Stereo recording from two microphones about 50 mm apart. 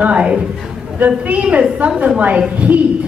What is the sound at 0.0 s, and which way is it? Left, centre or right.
A woman's voice, right.